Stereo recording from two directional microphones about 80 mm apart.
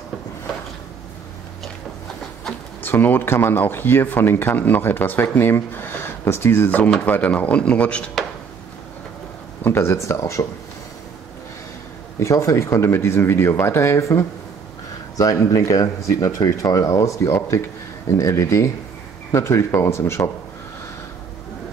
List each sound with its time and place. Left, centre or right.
2.8 s speech: left
6.8 s speech: centre
9.6 s speech: left
12.2 s speech: left
15.1 s speech: left